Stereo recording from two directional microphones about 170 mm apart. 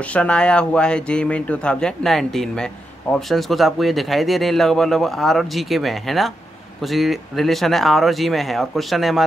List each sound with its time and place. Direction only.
0.0 s speech: 5° left (ahead or behind)